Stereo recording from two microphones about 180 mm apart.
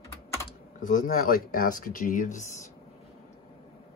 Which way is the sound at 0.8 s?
45° left (ahead or behind).